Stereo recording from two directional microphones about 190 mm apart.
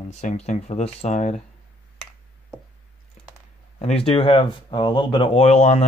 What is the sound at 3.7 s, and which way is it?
Speech, 30° left (ahead or behind).